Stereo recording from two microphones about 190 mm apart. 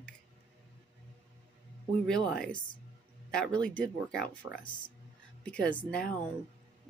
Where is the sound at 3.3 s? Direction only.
5° left (ahead or behind).